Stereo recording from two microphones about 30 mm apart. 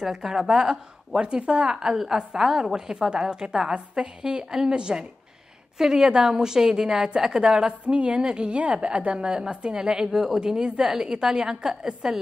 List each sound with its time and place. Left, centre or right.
0.0 s a woman's voice: centre
7.8 s a woman's voice: right
9.8 s a woman's voice: right